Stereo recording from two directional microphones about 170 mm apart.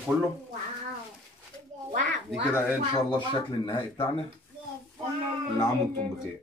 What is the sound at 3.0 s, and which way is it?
Speech, 25° left (ahead or behind).